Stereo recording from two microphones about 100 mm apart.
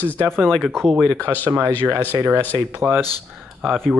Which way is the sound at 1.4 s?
20° right (ahead or behind).